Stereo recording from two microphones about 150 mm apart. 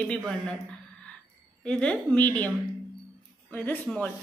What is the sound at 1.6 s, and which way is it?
Speech, 5° left (ahead or behind).